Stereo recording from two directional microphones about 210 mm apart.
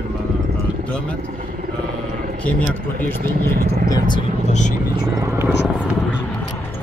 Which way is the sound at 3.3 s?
45° right (ahead or behind).